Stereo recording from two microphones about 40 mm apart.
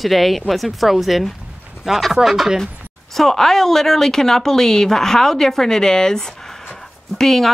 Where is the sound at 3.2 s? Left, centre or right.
Centre.